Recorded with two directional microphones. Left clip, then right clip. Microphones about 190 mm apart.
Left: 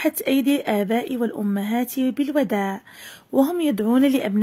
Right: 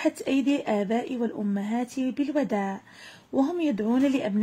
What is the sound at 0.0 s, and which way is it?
A woman's voice, 40° left (ahead or behind).